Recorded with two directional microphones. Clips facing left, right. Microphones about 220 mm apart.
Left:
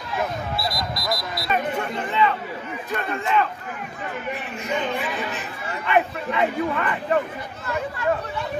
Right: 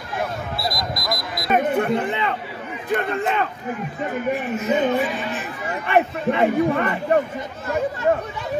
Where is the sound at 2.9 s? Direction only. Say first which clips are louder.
Right 2 dB; 55° right (ahead or behind).